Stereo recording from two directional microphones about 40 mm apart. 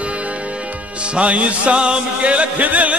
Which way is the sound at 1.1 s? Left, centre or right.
Right.